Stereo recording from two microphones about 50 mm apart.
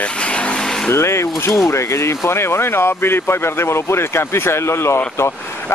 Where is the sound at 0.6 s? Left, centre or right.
Centre.